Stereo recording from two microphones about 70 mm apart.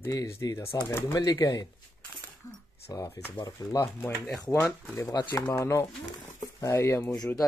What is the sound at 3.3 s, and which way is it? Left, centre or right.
Speech, left.